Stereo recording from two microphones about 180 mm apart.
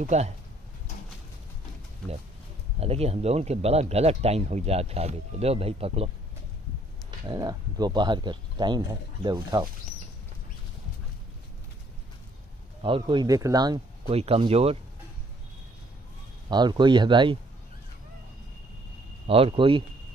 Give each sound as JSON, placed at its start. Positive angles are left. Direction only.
{"t": 0.0, "sound": "speech", "side_deg": -40}
{"t": 2.8, "sound": "speech", "side_deg": -35}
{"t": 7.2, "sound": "speech", "side_deg": -20}
{"t": 12.8, "sound": "speech", "side_deg": -25}
{"t": 14.1, "sound": "speech", "side_deg": -35}
{"t": 16.4, "sound": "speech", "side_deg": -25}
{"t": 19.2, "sound": "speech", "side_deg": -30}